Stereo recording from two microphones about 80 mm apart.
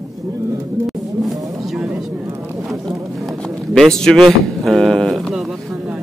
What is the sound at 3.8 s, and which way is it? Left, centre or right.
A man's voice, centre.